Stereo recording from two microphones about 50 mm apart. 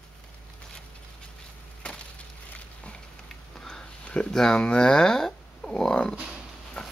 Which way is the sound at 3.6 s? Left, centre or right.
Centre.